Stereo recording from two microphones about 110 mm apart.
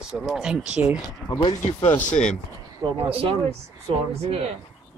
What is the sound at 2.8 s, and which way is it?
Speech, 35° right (ahead or behind).